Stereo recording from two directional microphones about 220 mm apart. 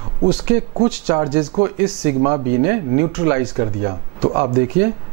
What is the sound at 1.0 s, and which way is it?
Speech, 20° right (ahead or behind).